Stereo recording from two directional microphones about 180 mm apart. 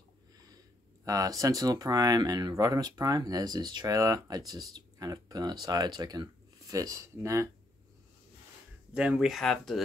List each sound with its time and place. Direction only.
1.0 s speech: 20° right (ahead or behind)
8.9 s speech: 5° right (ahead or behind)